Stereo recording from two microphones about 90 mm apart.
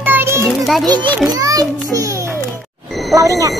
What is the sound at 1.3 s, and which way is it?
Children playing, 45° right (ahead or behind).